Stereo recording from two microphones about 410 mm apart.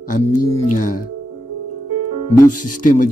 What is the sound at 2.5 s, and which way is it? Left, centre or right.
Speech, centre.